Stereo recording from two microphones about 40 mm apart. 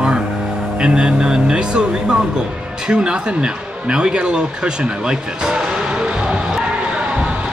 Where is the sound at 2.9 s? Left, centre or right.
Right.